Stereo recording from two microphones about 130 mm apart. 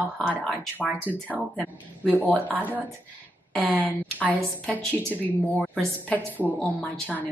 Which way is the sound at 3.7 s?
10° left (ahead or behind).